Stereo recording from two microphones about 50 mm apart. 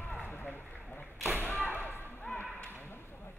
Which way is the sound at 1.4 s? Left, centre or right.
Left.